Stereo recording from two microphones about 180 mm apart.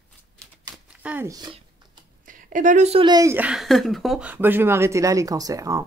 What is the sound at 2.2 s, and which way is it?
A woman's voice, 50° right (ahead or behind).